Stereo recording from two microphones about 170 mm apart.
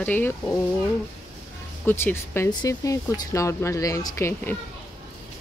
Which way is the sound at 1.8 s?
15° left (ahead or behind).